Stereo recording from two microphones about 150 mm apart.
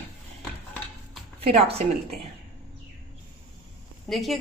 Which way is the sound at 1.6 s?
45° right (ahead or behind).